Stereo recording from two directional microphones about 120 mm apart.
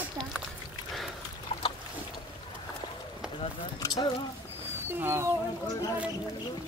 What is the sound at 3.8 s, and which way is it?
Speech, 35° left (ahead or behind).